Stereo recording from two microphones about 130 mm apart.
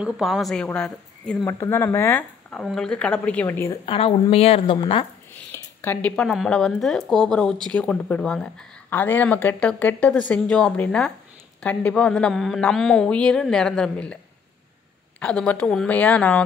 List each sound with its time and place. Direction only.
0.0 s a woman's voice: centre (ahead or behind)
1.4 s speech: 20° left (ahead or behind)
2.6 s speech: 5° left (ahead or behind)
3.8 s a woman's voice: 45° left (ahead or behind)
5.5 s a sound: 20° left (ahead or behind)
6.0 s a woman's voice: 5° left (ahead or behind)
15.1 s speech: 10° left (ahead or behind)